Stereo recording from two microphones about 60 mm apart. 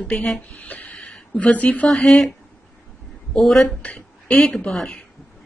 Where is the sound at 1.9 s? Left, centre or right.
Centre.